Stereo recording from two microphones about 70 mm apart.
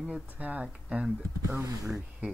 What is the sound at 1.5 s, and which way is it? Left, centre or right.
Speech, right.